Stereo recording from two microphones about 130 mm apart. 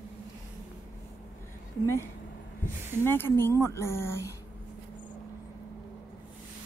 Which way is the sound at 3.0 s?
15° left (ahead or behind).